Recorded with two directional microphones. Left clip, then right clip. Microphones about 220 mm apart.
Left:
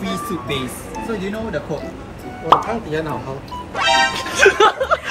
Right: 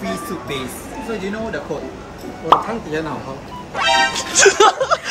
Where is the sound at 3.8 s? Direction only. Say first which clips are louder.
Even; centre (ahead or behind).